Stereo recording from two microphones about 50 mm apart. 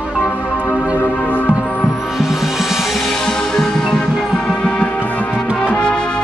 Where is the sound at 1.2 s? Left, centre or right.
Left.